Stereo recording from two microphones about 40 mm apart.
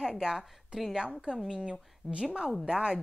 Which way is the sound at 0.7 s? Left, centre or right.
Right.